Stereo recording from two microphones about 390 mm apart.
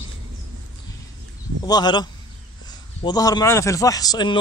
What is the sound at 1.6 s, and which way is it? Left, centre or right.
A man's voice, centre.